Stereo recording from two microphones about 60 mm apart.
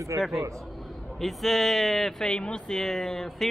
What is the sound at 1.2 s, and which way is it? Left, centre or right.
Speech, centre.